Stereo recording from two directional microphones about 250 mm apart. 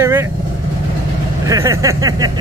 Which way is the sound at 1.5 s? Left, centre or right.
Centre.